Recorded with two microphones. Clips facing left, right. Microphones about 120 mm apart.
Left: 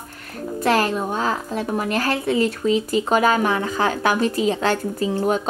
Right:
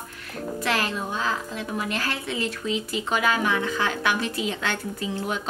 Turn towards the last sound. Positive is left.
turn(degrees=45)  # may be behind; listen again after turning